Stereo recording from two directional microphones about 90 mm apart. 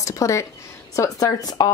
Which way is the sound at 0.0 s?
35° left (ahead or behind).